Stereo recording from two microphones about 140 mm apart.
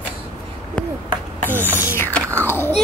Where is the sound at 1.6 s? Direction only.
15° left (ahead or behind).